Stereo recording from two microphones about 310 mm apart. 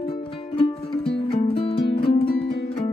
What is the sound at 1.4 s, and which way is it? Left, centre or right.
Music, centre.